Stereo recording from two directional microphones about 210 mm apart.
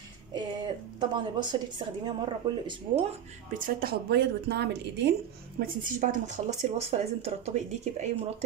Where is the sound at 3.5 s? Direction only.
45° right (ahead or behind).